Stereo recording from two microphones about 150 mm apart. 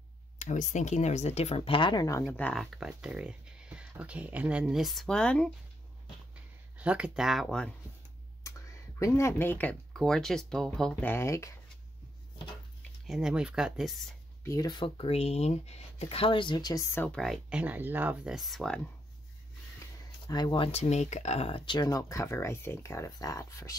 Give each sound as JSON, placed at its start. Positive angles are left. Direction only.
{"t": 0.4, "sound": "speech", "side_deg": 55}
{"t": 2.2, "sound": "speech", "side_deg": 10}
{"t": 6.8, "sound": "speech", "side_deg": -10}
{"t": 9.0, "sound": "speech", "side_deg": 20}
{"t": 13.0, "sound": "speech", "side_deg": -5}
{"t": 14.4, "sound": "speech", "side_deg": 20}
{"t": 14.7, "sound": "speech", "side_deg": 35}
{"t": 16.9, "sound": "speech", "side_deg": 10}
{"t": 20.2, "sound": "speech", "side_deg": 25}